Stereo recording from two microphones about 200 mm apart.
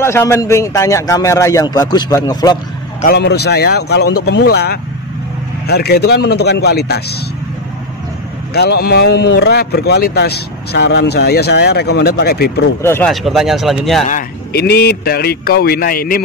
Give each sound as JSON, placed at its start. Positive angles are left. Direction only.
{"t": 0.0, "sound": "speech", "side_deg": 15}
{"t": 3.1, "sound": "speech", "side_deg": 55}
{"t": 8.5, "sound": "speech", "side_deg": 55}
{"t": 12.8, "sound": "speech", "side_deg": 10}
{"t": 13.1, "sound": "speech", "side_deg": 0}
{"t": 14.0, "sound": "speech", "side_deg": 45}